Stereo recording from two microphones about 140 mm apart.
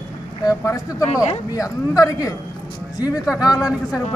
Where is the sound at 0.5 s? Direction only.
25° left (ahead or behind).